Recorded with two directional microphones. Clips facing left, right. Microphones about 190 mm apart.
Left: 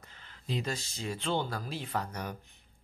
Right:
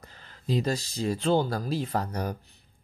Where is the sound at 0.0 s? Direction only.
40° right (ahead or behind).